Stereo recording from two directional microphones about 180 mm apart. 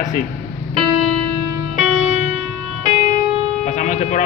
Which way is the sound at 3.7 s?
45° left (ahead or behind).